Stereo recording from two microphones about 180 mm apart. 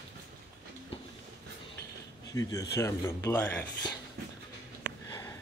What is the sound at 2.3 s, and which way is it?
Speech, 20° left (ahead or behind).